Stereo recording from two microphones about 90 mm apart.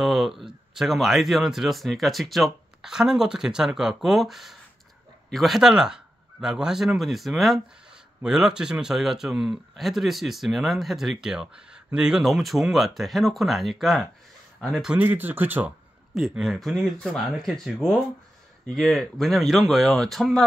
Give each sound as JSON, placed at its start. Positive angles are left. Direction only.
{"t": 0.0, "sound": "a man's voice", "side_deg": -5}
{"t": 15.0, "sound": "speech", "side_deg": -20}
{"t": 16.2, "sound": "a man's voice", "side_deg": -5}